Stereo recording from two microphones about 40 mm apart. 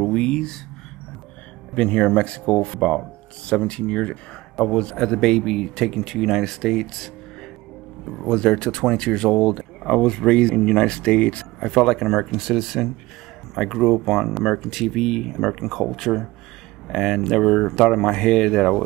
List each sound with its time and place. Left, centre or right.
0.0 s a sound: centre
1.8 s speech: left
4.9 s speech: centre
8.1 s speech: centre; by 11.4 s left
11.6 s speech: centre